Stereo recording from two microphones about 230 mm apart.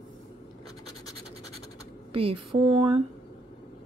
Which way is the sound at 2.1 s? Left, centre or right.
Right.